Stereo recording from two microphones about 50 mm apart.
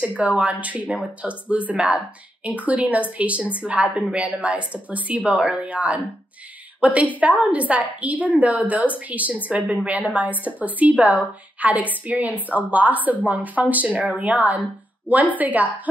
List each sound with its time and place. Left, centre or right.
0.2 s a woman's voice: right
1.2 s speech: centre
1.7 s a woman's voice: right